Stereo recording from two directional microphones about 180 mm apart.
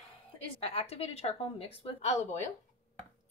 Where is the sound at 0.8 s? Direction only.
35° left (ahead or behind).